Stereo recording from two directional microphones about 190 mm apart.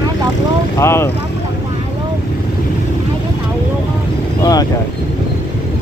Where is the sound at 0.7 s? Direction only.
15° left (ahead or behind).